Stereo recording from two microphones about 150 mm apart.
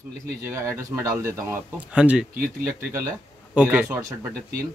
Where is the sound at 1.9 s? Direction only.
5° right (ahead or behind).